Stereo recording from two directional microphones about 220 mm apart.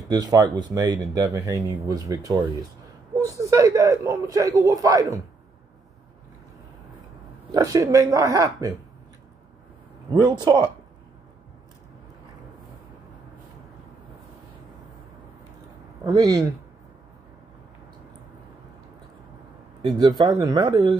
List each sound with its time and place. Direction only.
0.1 s speech: 15° right (ahead or behind)
7.5 s speech: 15° right (ahead or behind)
10.1 s speech: 20° right (ahead or behind)
16.0 s speech: 20° right (ahead or behind)
19.8 s speech: 20° right (ahead or behind)